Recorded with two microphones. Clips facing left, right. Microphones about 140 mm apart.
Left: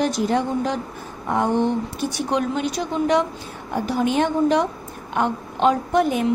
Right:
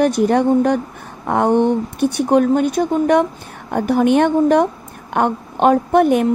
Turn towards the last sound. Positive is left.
turn(degrees=-55)  # may be behind; listen again after turning